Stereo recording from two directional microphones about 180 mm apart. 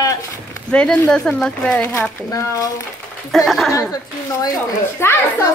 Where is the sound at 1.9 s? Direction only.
20° left (ahead or behind).